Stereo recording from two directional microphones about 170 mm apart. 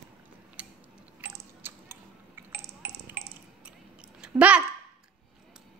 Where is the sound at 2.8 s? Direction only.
75° right (ahead or behind).